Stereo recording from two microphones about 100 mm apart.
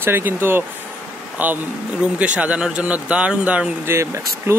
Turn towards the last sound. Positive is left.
turn(degrees=-25)  # may be behind; listen again after turning